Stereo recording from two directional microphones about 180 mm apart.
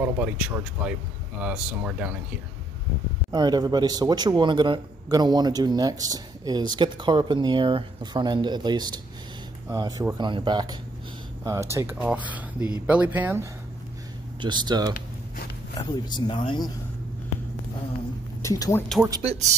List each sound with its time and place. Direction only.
0.0 s speech: 10° right (ahead or behind)
3.3 s a man's voice: 25° right (ahead or behind)
14.4 s a man's voice: 25° right (ahead or behind)
15.8 s speech: 25° left (ahead or behind)
18.4 s speech: 15° left (ahead or behind)